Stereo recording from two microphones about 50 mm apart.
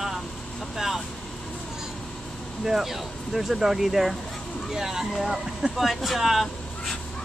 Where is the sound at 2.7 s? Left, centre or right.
Centre.